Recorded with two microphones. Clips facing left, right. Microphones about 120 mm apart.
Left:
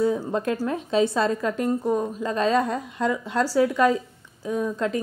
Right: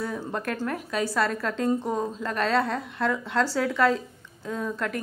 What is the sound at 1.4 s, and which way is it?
Speech, 10° left (ahead or behind).